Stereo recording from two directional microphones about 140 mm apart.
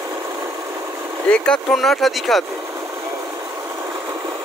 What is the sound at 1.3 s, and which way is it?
Speech, 5° left (ahead or behind).